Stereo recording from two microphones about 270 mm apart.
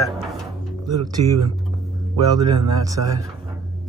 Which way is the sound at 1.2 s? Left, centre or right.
Right.